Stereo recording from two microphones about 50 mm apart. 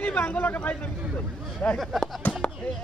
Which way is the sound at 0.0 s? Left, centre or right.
Left.